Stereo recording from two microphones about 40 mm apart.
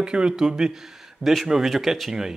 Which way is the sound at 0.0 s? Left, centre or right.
Right.